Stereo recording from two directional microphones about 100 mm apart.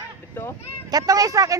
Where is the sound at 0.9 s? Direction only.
35° right (ahead or behind).